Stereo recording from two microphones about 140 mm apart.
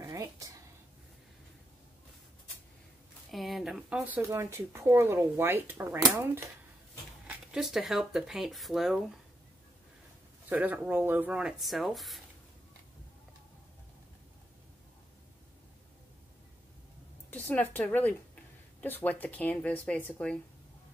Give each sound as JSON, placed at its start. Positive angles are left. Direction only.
{"t": 0.0, "sound": "a sound", "side_deg": -20}
{"t": 3.3, "sound": "speech", "side_deg": 0}
{"t": 4.3, "sound": "speech", "side_deg": -20}
{"t": 7.2, "sound": "speech", "side_deg": -5}
{"t": 10.5, "sound": "speech", "side_deg": -10}
{"t": 17.3, "sound": "a woman's voice", "side_deg": 10}